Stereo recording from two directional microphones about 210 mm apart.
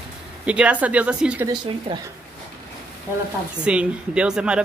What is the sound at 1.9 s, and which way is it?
Speech, 25° right (ahead or behind).